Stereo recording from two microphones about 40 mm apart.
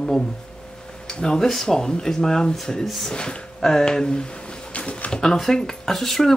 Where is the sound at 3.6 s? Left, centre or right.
Centre.